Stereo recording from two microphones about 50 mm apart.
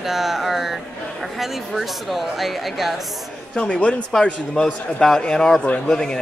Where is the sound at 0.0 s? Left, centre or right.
Centre.